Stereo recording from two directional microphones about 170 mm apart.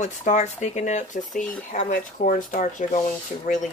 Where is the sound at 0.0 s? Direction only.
45° left (ahead or behind).